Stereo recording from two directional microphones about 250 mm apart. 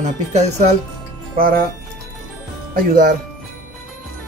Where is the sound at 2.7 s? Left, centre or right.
Right.